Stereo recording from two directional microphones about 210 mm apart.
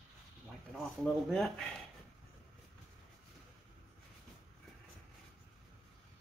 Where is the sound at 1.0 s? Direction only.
Centre (ahead or behind).